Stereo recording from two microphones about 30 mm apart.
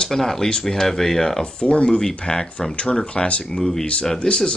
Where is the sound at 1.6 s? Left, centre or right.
Left.